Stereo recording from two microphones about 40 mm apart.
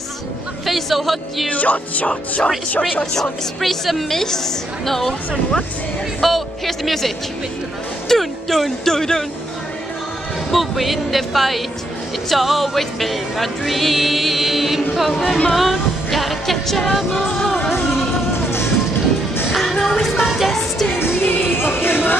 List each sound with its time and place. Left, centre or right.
0.7 s music: centre
1.5 s speech: left
3.2 s music: centre
6.2 s speech: centre
8.1 s speech: centre
10.5 s music: centre
18.3 s music: left
19.7 s music: centre
20.0 s music: centre
20.9 s music: left